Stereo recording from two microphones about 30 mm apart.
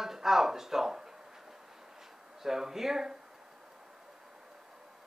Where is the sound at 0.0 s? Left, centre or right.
Centre.